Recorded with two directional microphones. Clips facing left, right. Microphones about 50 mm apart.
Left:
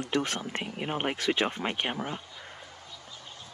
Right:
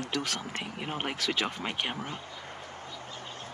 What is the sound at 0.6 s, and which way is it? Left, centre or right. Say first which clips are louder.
Speech: left 3 dB; centre.